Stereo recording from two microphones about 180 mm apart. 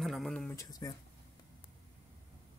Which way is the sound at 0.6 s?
20° left (ahead or behind).